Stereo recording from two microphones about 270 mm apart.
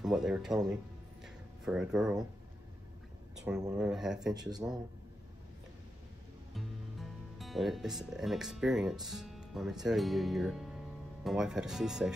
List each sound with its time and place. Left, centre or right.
0.0 s speech: centre
1.2 s music: centre
3.3 s speech: centre
6.5 s speech: centre